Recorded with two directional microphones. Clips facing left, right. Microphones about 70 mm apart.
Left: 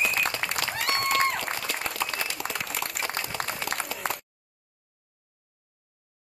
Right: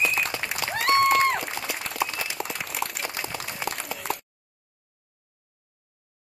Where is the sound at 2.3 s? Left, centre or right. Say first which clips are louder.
Even; centre.